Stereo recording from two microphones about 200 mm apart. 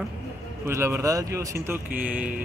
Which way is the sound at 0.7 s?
15° right (ahead or behind).